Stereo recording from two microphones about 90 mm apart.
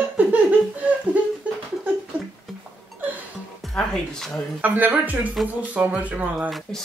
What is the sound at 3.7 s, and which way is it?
Speech, 5° left (ahead or behind).